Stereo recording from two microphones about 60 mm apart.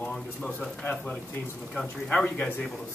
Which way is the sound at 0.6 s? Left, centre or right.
Left.